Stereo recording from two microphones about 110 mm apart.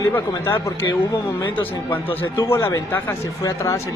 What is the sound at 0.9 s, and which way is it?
Speech, 35° left (ahead or behind).